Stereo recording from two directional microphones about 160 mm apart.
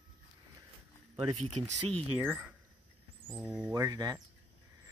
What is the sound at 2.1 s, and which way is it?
Speech, 10° right (ahead or behind).